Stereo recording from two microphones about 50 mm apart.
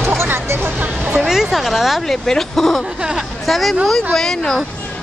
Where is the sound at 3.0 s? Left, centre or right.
Centre.